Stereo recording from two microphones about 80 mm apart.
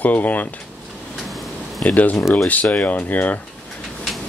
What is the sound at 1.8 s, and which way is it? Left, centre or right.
Speech, left.